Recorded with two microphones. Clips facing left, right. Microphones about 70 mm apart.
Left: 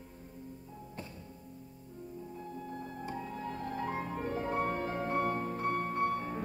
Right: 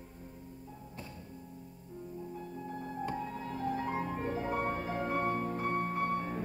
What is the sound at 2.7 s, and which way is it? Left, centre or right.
Music, right.